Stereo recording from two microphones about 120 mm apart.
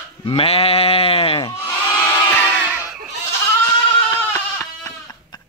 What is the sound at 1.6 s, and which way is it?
Crowd, 15° left (ahead or behind).